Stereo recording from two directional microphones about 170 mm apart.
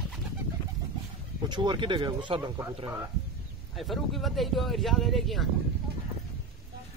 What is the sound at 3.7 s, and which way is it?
Speech, centre (ahead or behind).